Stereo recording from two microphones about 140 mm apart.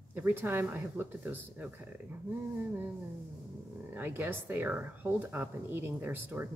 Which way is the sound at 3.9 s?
15° right (ahead or behind).